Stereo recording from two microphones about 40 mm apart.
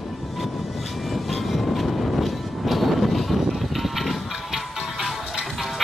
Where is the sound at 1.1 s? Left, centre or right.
Centre.